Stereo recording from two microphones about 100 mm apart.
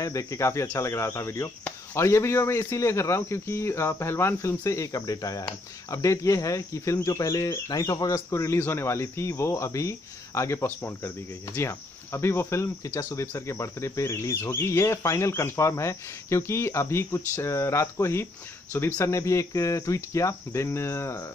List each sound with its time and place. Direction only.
0.0 s speech: 35° left (ahead or behind)